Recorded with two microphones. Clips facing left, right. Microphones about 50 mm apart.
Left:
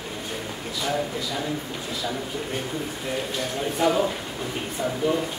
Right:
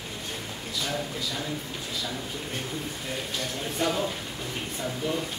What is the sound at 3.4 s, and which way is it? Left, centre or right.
Speech, centre.